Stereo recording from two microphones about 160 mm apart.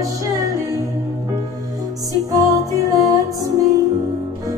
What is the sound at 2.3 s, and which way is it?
Music, 20° right (ahead or behind).